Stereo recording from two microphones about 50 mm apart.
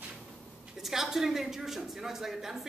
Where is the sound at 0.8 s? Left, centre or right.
Centre.